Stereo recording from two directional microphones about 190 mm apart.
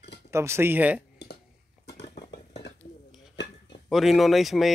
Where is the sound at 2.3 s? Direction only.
60° left (ahead or behind).